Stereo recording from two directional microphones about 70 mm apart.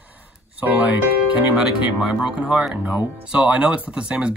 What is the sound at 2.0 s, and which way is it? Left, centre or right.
Speech, centre.